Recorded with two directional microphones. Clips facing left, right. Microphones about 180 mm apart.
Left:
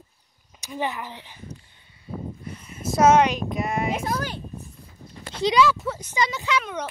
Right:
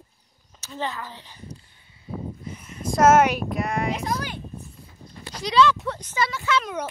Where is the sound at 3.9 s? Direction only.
50° left (ahead or behind).